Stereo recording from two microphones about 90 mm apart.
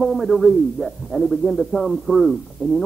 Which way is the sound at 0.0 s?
Centre (ahead or behind).